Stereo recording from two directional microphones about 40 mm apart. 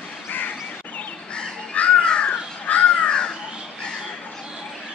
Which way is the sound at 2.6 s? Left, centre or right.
Left.